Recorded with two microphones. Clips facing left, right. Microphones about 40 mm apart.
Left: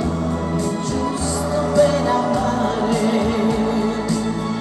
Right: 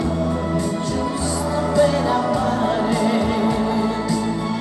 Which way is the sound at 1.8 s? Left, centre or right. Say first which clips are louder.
Left 1 dB; centre.